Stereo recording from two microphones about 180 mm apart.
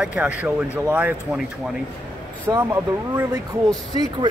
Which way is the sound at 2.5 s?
15° right (ahead or behind).